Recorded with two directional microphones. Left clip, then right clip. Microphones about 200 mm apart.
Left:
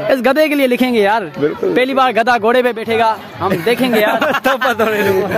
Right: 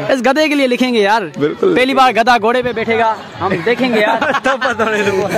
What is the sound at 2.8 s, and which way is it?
Speech, 5° left (ahead or behind).